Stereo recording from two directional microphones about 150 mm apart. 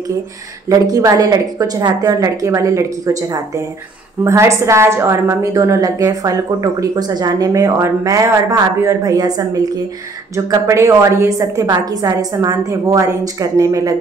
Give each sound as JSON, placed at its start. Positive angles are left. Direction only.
{"t": 0.7, "sound": "a woman's voice", "side_deg": -25}